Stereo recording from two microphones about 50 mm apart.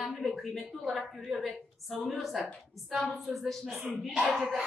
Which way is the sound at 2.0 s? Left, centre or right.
Centre.